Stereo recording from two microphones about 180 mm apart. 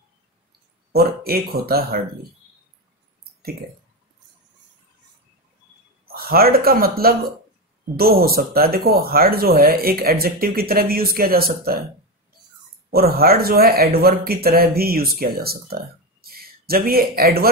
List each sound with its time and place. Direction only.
0.9 s speech: 60° right (ahead or behind)
6.1 s speech: 55° right (ahead or behind)
12.9 s speech: 55° right (ahead or behind)